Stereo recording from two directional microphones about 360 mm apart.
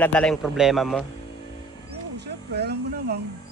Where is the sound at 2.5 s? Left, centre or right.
Right.